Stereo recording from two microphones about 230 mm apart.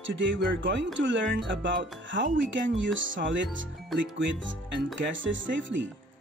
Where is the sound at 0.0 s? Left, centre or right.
Right.